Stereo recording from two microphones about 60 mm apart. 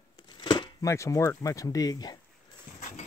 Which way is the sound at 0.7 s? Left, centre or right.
Left.